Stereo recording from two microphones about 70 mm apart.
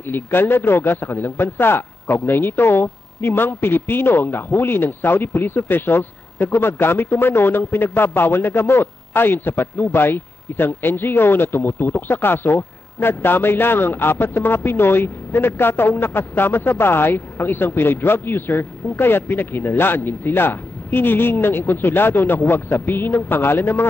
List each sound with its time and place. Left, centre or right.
0.1 s speech: left